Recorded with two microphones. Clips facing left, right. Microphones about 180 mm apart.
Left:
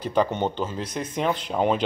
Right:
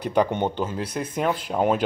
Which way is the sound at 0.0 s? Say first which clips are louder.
Right 1 dB; 15° right (ahead or behind).